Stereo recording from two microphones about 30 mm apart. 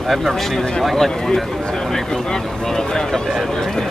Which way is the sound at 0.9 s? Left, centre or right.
Centre.